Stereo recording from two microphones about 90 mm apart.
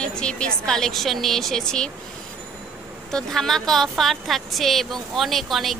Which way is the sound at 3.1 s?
5° left (ahead or behind).